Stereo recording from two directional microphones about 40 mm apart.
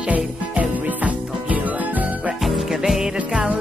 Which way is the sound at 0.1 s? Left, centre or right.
Right.